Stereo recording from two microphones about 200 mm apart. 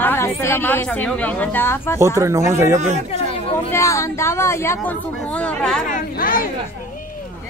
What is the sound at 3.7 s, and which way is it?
A woman's voice, 15° left (ahead or behind).